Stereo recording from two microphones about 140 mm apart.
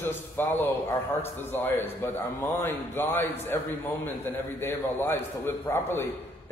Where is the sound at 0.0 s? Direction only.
15° left (ahead or behind).